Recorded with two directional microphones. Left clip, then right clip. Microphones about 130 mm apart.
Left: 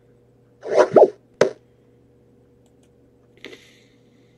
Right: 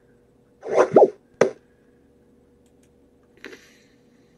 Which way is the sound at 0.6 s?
30° left (ahead or behind).